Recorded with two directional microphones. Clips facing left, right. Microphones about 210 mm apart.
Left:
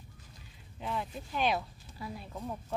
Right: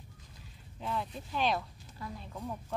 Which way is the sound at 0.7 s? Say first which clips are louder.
Even; 5° left (ahead or behind).